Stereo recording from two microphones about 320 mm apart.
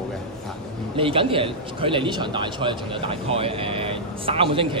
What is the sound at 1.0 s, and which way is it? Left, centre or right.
A man's voice, centre.